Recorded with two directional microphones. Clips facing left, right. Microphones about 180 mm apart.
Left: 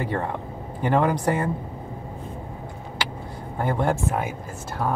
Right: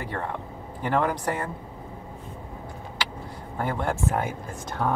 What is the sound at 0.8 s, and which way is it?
Speech, 15° left (ahead or behind).